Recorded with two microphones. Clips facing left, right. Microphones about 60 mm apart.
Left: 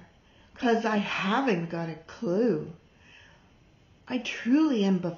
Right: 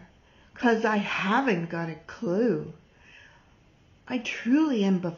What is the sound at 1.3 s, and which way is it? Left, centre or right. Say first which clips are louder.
Speech: right 2 dB; right.